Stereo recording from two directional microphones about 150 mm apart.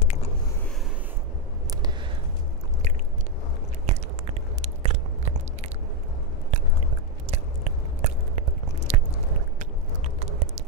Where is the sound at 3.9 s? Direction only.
45° right (ahead or behind).